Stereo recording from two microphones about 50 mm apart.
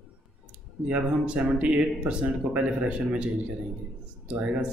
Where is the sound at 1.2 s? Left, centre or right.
Right.